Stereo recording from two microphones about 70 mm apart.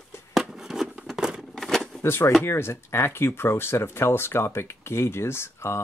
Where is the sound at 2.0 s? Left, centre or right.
Left.